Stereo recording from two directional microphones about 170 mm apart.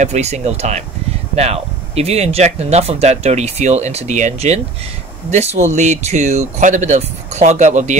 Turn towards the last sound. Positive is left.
turn(degrees=-45)  # may be behind; listen again after turning